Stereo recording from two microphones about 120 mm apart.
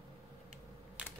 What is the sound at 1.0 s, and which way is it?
Typing, 10° right (ahead or behind).